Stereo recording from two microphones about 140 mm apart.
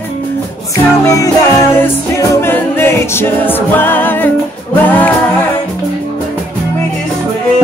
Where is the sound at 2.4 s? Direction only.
15° left (ahead or behind).